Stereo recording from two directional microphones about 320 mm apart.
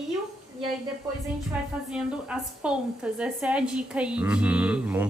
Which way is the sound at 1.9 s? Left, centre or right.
Centre.